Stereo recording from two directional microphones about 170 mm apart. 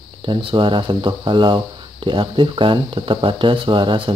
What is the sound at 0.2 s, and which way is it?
Speech, 30° right (ahead or behind).